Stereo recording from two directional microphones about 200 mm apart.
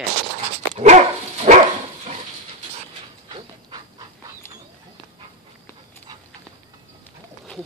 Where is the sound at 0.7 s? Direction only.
35° right (ahead or behind).